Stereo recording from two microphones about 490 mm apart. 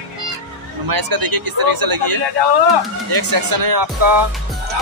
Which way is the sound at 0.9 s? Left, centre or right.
Right.